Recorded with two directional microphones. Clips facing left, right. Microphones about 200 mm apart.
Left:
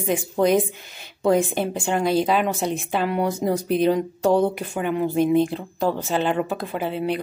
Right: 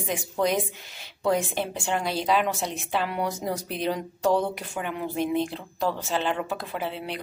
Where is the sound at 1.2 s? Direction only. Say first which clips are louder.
Left 5 dB; 50° left (ahead or behind).